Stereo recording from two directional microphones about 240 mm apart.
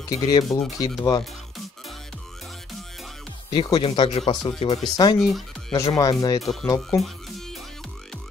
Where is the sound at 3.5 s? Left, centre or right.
Centre.